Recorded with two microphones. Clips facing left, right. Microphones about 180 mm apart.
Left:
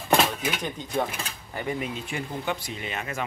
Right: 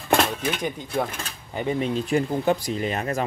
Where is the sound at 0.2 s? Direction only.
5° left (ahead or behind).